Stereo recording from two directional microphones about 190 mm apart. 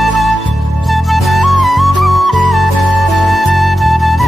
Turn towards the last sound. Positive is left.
turn(degrees=0)  # may be behind; listen again after turning